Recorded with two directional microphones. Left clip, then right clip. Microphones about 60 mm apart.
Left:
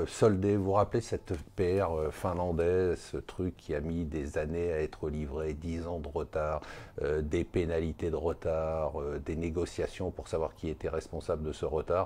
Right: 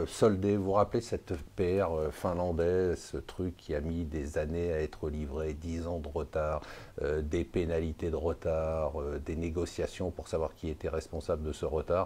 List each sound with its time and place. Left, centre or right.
0.0 s speech: left